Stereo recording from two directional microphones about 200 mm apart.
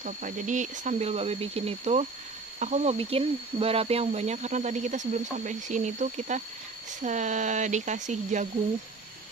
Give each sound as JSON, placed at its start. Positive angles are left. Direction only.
{"t": 0.0, "sound": "speech", "side_deg": -40}